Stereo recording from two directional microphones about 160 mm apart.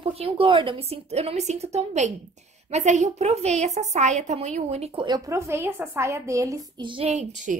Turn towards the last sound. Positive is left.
turn(degrees=-50)  # may be behind; listen again after turning